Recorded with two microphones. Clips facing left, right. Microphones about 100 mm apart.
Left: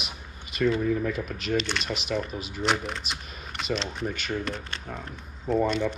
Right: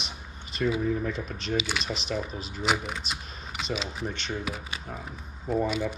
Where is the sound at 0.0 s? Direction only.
5° left (ahead or behind).